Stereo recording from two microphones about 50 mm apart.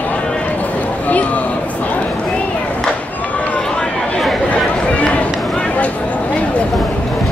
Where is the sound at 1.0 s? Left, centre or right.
Left.